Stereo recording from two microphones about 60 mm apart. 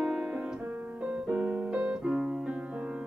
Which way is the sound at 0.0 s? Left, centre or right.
Centre.